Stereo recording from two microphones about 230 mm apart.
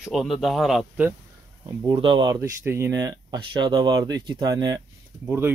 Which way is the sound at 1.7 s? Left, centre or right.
Centre.